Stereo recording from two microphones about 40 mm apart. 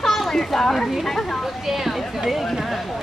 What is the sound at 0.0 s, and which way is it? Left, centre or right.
Speech, centre.